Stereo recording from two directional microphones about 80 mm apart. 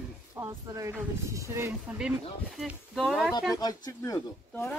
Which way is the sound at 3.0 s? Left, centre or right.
Centre.